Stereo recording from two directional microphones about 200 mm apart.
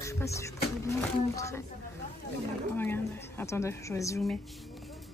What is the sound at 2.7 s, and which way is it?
A woman's voice, 10° left (ahead or behind).